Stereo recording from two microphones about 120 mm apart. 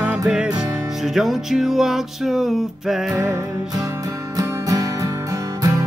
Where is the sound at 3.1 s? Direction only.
30° right (ahead or behind).